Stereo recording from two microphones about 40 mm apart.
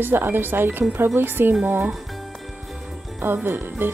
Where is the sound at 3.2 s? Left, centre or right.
Right.